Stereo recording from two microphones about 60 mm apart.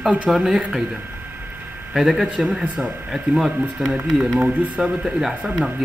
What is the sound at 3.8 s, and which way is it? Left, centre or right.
Speech, centre.